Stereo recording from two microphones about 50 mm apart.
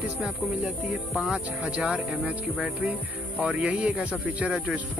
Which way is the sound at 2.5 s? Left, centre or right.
Centre.